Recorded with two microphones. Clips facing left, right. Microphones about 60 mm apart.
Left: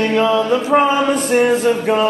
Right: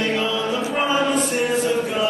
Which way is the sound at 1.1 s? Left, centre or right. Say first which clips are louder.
Left 6 dB; left.